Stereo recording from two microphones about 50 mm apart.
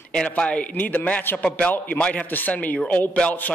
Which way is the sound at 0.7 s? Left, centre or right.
Left.